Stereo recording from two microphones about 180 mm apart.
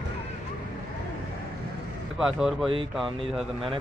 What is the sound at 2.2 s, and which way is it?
Speech, centre (ahead or behind).